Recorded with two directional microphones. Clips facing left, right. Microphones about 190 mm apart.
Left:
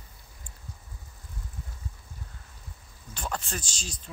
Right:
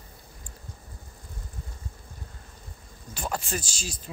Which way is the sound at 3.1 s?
10° right (ahead or behind).